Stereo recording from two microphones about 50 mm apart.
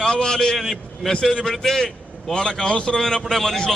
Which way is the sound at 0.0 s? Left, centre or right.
Centre.